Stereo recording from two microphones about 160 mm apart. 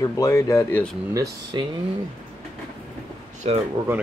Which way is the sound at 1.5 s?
30° right (ahead or behind).